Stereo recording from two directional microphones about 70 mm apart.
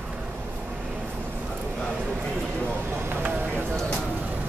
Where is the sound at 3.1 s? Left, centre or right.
Right.